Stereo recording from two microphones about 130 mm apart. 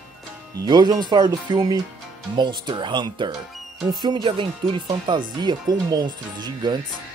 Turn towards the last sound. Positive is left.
turn(degrees=-35)  # may be behind; listen again after turning